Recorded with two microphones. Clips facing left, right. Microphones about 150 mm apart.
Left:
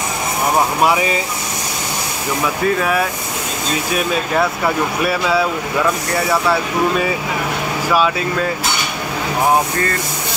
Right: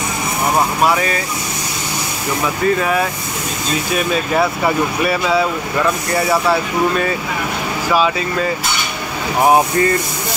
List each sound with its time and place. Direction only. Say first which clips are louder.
0.8 s speech: even; 15° left (ahead or behind)
2.6 s speech: right 2 dB; centre (ahead or behind)
7.9 s speech: even; centre (ahead or behind)